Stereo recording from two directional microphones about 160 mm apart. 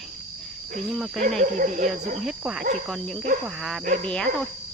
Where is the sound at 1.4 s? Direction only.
50° right (ahead or behind).